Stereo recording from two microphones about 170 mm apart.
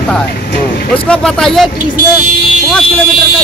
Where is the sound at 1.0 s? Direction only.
5° left (ahead or behind).